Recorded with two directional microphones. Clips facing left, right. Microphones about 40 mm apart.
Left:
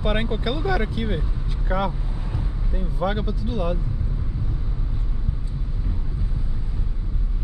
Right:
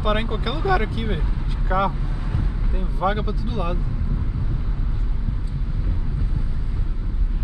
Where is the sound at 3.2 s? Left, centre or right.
Right.